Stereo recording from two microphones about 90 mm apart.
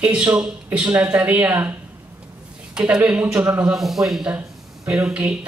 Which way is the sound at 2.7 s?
15° right (ahead or behind).